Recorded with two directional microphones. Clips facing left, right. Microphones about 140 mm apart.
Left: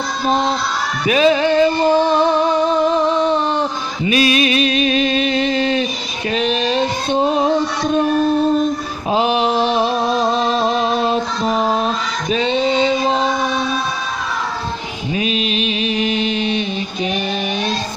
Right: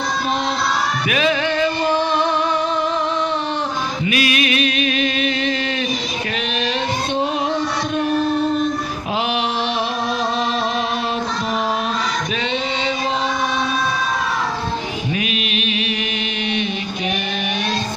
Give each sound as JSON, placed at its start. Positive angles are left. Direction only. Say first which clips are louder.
{"t": 1.0, "sound": "music", "louder": "left 8 dB", "side_deg": 30}
{"t": 9.1, "sound": "female singing", "louder": "left 6 dB", "side_deg": 35}
{"t": 12.3, "sound": "music", "louder": "left 6 dB", "side_deg": 35}
{"t": 15.1, "sound": "mantra", "louder": "left 8 dB", "side_deg": 30}